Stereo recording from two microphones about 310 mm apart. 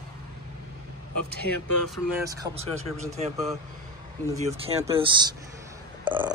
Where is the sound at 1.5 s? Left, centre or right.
Left.